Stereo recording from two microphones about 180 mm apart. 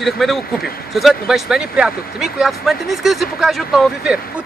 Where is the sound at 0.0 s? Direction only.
Centre (ahead or behind).